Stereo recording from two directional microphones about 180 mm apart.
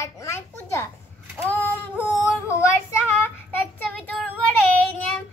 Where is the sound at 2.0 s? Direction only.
5° right (ahead or behind).